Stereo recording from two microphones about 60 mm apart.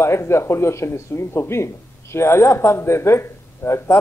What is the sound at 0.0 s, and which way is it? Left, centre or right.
Speech, left.